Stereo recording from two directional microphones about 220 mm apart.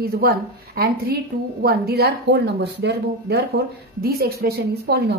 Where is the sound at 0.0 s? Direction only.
45° right (ahead or behind).